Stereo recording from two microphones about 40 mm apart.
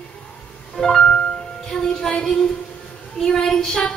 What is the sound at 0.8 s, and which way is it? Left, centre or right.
Music, centre.